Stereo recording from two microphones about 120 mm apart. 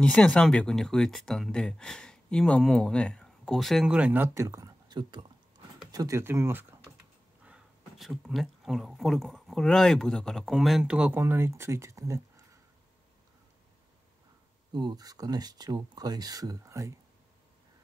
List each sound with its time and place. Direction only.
0.0 s speech: 10° left (ahead or behind); by 6.6 s 20° right (ahead or behind)
7.4 s speech: 5° right (ahead or behind); by 12.2 s 25° right (ahead or behind)
14.7 s speech: 40° right (ahead or behind)